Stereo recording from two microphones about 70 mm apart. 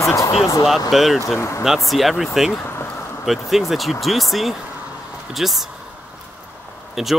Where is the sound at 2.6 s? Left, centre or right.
Left.